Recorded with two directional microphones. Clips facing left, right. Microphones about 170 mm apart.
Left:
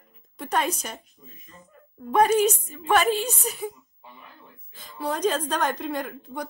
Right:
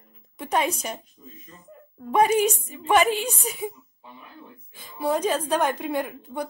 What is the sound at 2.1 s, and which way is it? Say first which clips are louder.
A woman's voice: even; 10° right (ahead or behind).